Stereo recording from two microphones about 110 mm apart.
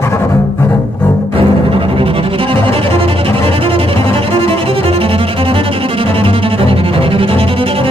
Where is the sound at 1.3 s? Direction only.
55° right (ahead or behind).